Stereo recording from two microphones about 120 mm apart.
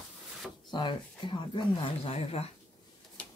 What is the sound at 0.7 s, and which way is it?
Speech, 40° left (ahead or behind).